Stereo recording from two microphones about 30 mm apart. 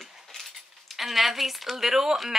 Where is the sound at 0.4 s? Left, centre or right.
Centre.